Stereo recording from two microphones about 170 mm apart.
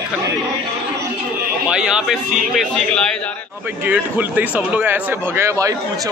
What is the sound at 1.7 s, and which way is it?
Speech, 5° right (ahead or behind).